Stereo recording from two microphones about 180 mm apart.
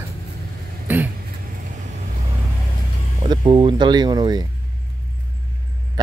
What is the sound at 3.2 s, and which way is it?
Speech, 25° right (ahead or behind).